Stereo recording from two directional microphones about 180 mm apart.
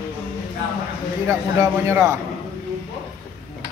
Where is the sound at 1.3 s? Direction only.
15° right (ahead or behind).